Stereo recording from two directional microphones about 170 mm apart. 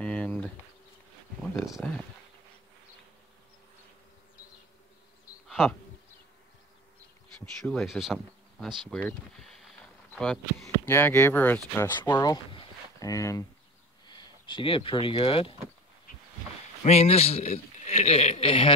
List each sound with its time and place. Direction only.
0.0 s bee: 10° left (ahead or behind)
1.4 s speech: centre (ahead or behind)
5.5 s insect: centre (ahead or behind)
7.3 s speech: 5° left (ahead or behind)
12.0 s speech: 20° left (ahead or behind)
16.8 s a man's voice: 40° left (ahead or behind)